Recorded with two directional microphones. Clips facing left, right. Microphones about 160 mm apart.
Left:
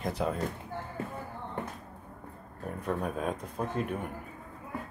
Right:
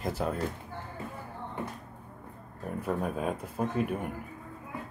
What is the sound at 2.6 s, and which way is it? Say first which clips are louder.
Speech: right 1 dB; centre (ahead or behind).